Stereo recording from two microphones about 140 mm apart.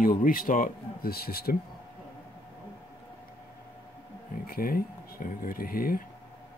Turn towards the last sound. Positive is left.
turn(degrees=90)